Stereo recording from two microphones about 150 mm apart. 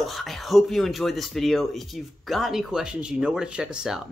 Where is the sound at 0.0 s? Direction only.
Centre (ahead or behind).